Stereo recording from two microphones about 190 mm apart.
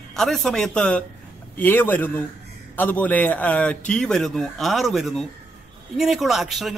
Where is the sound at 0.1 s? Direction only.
Centre (ahead or behind).